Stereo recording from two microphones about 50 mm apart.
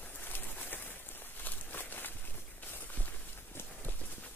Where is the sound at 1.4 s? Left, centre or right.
Left.